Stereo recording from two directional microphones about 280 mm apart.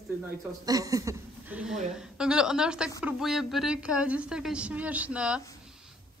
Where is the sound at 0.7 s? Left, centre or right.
Centre.